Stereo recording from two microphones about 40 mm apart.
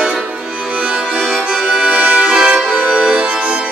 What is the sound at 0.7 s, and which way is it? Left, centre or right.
Music, right.